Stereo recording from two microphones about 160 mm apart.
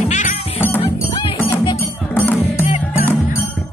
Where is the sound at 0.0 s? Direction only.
50° left (ahead or behind).